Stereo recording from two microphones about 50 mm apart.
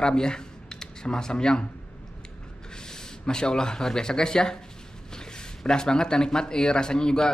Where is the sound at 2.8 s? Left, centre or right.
Centre.